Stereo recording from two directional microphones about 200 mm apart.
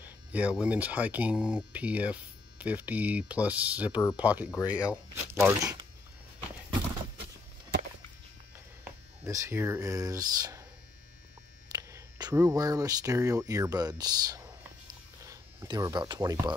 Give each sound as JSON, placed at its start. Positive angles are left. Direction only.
{"t": 0.0, "sound": "speech", "side_deg": -5}
{"t": 8.8, "sound": "speech", "side_deg": -15}
{"t": 11.7, "sound": "speech", "side_deg": -20}